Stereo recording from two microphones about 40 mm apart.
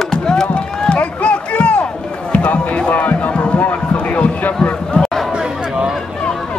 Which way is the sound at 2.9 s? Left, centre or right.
Left.